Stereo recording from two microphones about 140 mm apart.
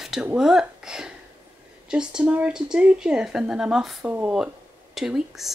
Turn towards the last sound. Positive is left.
turn(degrees=-5)  # may be behind; listen again after turning